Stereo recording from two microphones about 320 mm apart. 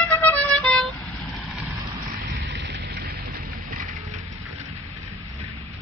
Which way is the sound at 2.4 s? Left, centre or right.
Right.